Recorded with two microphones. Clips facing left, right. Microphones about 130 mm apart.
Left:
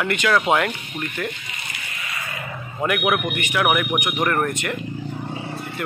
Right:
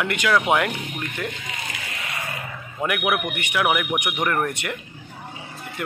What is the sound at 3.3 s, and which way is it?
A man's voice, 10° right (ahead or behind).